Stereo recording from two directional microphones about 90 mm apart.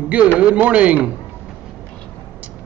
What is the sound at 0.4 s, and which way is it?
Speech, 15° right (ahead or behind).